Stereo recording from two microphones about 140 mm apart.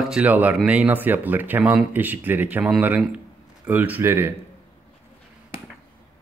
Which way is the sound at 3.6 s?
10° right (ahead or behind).